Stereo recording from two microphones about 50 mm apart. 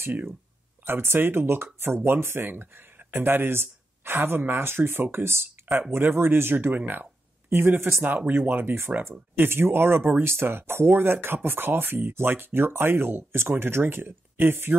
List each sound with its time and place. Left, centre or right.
0.0 s speech: right